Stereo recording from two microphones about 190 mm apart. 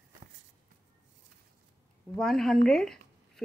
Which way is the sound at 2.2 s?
Centre (ahead or behind).